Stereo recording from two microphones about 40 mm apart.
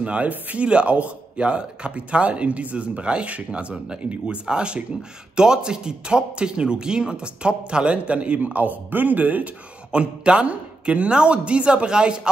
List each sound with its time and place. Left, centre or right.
0.0 s a man's voice: right
8.4 s speech: right
9.8 s speech: right